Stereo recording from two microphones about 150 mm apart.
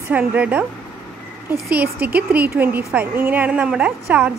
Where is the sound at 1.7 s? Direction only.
10° right (ahead or behind).